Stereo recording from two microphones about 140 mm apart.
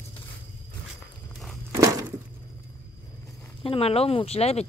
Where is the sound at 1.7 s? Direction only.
25° right (ahead or behind).